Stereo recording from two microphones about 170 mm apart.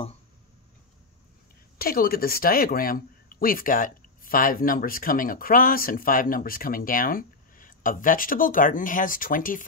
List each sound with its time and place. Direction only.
1.8 s speech: 60° left (ahead or behind)